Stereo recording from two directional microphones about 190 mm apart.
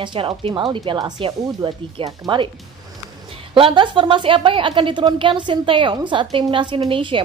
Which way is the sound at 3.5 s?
25° right (ahead or behind).